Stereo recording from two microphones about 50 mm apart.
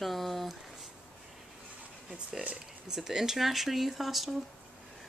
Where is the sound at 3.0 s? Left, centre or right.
Centre.